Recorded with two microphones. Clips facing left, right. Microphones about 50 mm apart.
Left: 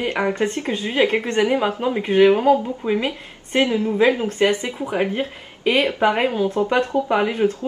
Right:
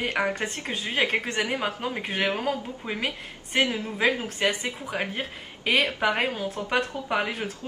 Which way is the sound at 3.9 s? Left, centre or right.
Left.